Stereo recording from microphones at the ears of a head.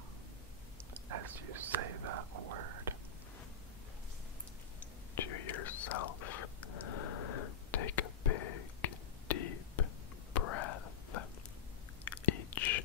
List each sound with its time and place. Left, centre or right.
0.9 s whispering: right
5.1 s whispering: left